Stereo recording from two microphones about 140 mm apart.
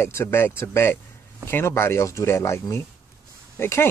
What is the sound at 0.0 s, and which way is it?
Speech, 20° left (ahead or behind).